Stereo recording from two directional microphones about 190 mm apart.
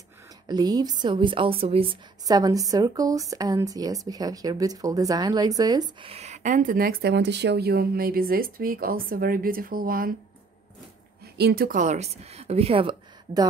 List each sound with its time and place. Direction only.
0.5 s a woman's voice: 20° right (ahead or behind); by 10.1 s 50° right (ahead or behind)
11.3 s a woman's voice: 55° right (ahead or behind); by 13.5 s 25° right (ahead or behind)